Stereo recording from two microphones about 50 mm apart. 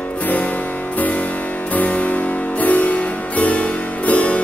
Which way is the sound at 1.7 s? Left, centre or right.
Left.